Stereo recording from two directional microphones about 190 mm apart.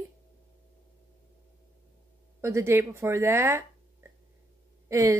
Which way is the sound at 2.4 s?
15° right (ahead or behind).